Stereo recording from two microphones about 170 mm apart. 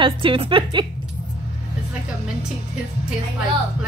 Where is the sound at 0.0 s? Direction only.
30° right (ahead or behind).